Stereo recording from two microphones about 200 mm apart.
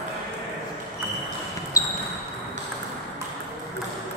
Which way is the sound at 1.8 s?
15° left (ahead or behind).